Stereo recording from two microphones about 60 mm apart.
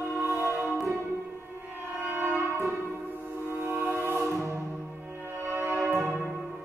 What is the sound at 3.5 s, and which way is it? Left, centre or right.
Music, right.